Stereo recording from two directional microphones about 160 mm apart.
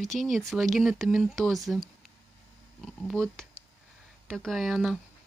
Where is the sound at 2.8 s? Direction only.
5° left (ahead or behind).